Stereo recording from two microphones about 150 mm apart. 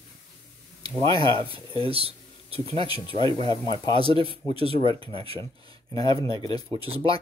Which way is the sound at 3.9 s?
40° right (ahead or behind).